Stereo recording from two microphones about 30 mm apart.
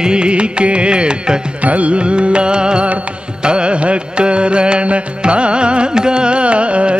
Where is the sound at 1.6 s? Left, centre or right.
Right.